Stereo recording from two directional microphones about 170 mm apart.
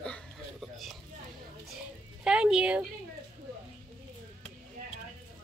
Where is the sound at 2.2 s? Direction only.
5° right (ahead or behind).